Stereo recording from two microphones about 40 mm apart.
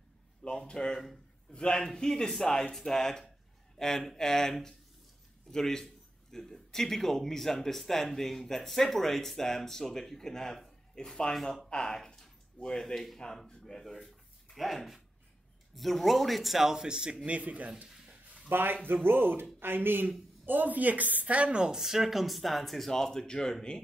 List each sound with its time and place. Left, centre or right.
0.4 s speech: centre
12.8 s speech: centre
13.5 s a sound: centre
15.7 s speech: centre
17.3 s speech: right
18.5 s speech: right
20.4 s a woman's voice: right
21.6 s speech: centre